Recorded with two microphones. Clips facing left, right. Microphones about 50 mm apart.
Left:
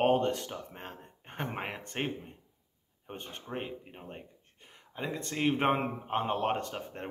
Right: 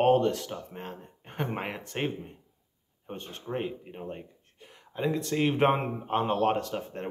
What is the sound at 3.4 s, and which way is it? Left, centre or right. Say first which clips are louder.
Speech: right 7 dB; centre.